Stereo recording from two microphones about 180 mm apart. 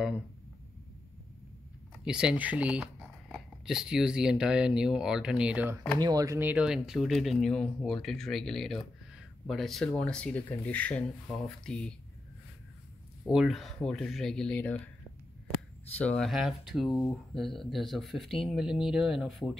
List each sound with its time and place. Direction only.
2.0 s speech: 5° right (ahead or behind)
5.9 s speech: 20° right (ahead or behind); by 11.9 s 5° left (ahead or behind)
13.3 s speech: centre (ahead or behind)
16.0 s speech: 5° left (ahead or behind)